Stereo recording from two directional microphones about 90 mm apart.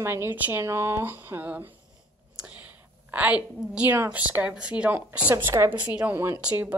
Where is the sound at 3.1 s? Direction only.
15° right (ahead or behind).